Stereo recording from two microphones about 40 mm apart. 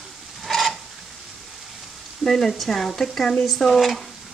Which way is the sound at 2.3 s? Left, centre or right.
Centre.